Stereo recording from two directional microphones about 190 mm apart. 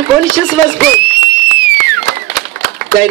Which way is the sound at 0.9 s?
55° right (ahead or behind).